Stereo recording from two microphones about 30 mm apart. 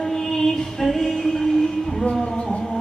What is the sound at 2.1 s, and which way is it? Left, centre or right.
Music, left.